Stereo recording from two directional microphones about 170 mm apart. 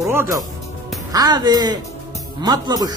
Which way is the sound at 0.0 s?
15° right (ahead or behind).